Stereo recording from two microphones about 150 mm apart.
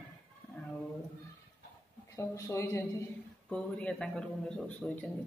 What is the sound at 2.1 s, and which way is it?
Speech, 20° left (ahead or behind).